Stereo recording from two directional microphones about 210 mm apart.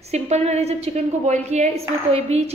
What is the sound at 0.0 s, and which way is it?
A woman's voice, 30° right (ahead or behind).